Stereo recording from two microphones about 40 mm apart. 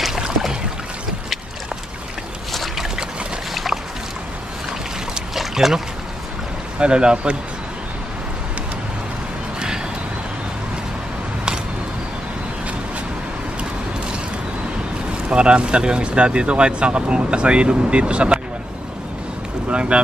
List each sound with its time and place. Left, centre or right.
2.5 s boat: centre
5.3 s boat: centre
6.8 s speech: right
15.2 s speech: right
19.7 s boat: right